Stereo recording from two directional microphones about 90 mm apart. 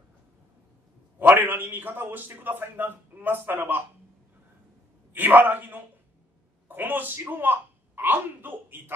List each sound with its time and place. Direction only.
1.2 s a man's voice: 20° right (ahead or behind)
5.1 s a man's voice: 20° right (ahead or behind)